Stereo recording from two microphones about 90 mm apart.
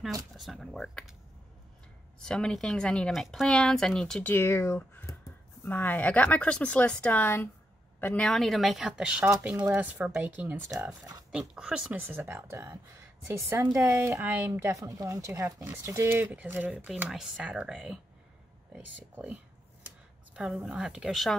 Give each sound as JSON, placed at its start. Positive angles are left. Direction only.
{"t": 0.4, "sound": "speech", "side_deg": 0}
{"t": 2.1, "sound": "speech", "side_deg": 10}
{"t": 4.2, "sound": "speech", "side_deg": 25}
{"t": 8.2, "sound": "speech", "side_deg": 5}
{"t": 10.9, "sound": "speech", "side_deg": -45}
{"t": 11.3, "sound": "speech", "side_deg": -10}
{"t": 11.9, "sound": "speech", "side_deg": -20}
{"t": 13.7, "sound": "speech", "side_deg": -35}
{"t": 14.5, "sound": "speech", "side_deg": -35}
{"t": 16.1, "sound": "speech", "side_deg": -20}
{"t": 20.3, "sound": "speech", "side_deg": -5}